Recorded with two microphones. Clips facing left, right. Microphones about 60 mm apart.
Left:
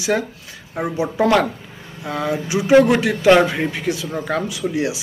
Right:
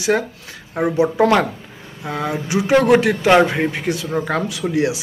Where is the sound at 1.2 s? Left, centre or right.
Right.